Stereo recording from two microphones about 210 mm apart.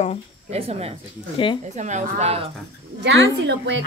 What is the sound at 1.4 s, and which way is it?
Speech, 25° left (ahead or behind).